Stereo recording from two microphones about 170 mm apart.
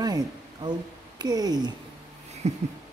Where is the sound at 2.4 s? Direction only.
40° right (ahead or behind).